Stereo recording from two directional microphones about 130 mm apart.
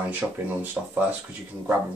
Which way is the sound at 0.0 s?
10° right (ahead or behind).